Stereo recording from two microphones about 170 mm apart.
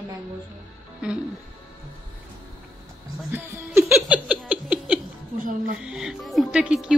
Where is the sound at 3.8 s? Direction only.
5° right (ahead or behind).